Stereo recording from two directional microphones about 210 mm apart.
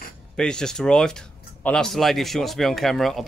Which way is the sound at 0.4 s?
5° left (ahead or behind).